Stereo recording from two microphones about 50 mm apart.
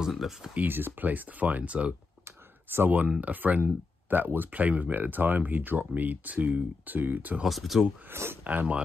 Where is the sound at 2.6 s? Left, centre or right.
Right.